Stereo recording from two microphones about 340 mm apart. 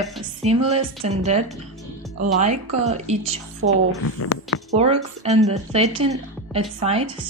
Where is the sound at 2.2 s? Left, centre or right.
Right.